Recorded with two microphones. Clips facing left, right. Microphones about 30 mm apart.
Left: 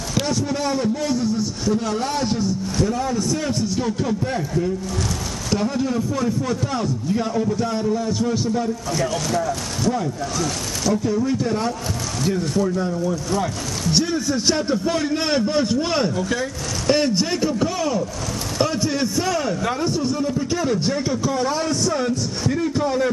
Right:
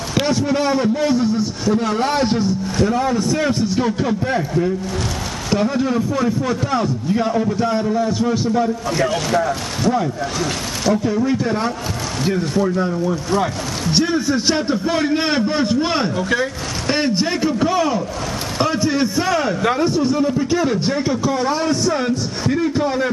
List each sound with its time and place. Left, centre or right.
0.1 s a man's voice: right